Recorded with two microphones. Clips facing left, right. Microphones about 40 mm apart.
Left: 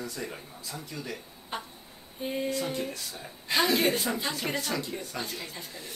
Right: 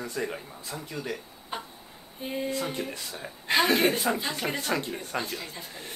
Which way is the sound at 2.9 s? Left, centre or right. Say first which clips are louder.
Right 3 dB; right.